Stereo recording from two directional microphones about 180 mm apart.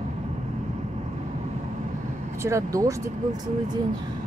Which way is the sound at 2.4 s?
15° right (ahead or behind).